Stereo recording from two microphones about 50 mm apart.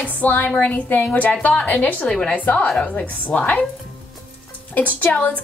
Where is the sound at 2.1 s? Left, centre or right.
Centre.